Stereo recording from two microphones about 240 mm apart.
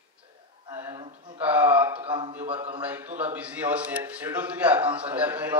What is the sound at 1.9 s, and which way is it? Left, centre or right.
Speech, right.